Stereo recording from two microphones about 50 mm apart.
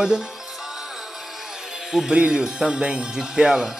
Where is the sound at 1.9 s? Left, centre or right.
Centre.